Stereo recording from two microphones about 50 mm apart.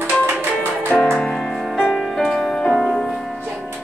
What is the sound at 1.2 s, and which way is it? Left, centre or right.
Music, centre.